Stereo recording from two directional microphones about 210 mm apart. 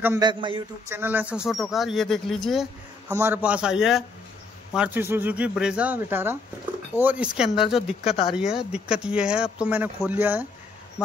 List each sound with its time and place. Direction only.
0.0 s a man's voice: 15° right (ahead or behind)
0.8 s speech: 10° right (ahead or behind)
3.1 s speech: 10° right (ahead or behind)